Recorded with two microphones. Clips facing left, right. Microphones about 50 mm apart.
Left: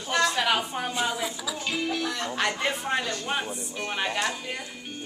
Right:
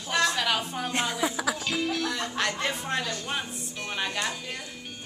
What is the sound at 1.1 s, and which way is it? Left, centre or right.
Speech, right.